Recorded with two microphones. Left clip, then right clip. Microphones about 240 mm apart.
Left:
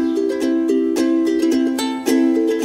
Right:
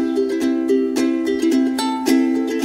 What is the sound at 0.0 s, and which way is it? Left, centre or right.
Music, centre.